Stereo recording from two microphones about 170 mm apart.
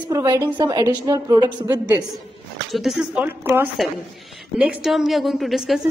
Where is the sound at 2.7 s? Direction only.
Centre (ahead or behind).